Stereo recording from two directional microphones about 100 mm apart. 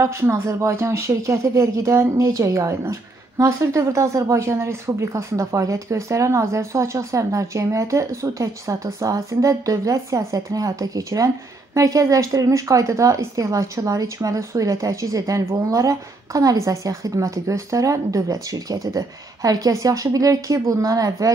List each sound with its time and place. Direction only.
0.0 s speech: 30° right (ahead or behind)